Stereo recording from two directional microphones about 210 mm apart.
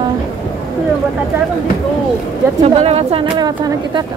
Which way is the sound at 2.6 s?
30° right (ahead or behind).